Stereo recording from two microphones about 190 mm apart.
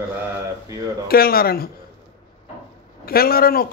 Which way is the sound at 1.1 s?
50° left (ahead or behind).